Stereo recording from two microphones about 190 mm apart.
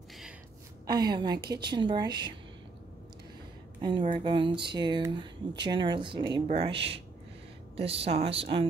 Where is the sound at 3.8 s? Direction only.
25° right (ahead or behind).